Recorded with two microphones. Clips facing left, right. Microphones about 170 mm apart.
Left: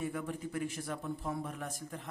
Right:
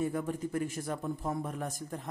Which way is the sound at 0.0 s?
40° right (ahead or behind).